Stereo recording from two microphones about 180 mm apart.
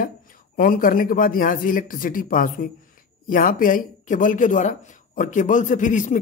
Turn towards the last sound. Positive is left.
turn(degrees=45)  # may be behind; listen again after turning